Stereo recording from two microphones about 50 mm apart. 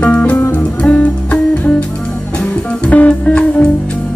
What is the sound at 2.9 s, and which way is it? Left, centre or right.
Music, left.